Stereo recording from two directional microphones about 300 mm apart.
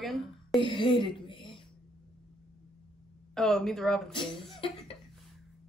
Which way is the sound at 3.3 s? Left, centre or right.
Centre.